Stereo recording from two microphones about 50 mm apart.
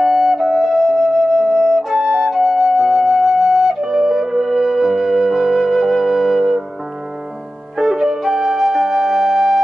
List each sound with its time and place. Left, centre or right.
0.0 s flute: centre
7.7 s music: centre